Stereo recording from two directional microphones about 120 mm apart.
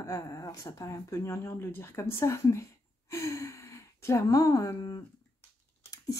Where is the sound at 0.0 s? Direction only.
25° left (ahead or behind).